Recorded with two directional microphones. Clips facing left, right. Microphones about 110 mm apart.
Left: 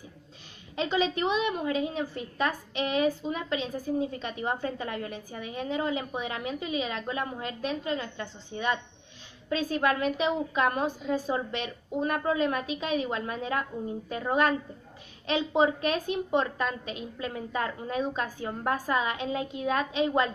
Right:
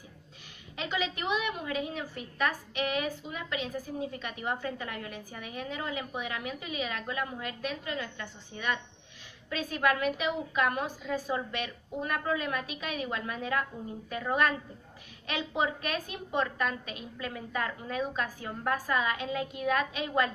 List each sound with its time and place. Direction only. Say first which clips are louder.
0.7 s a woman's voice: left 6 dB; 30° left (ahead or behind)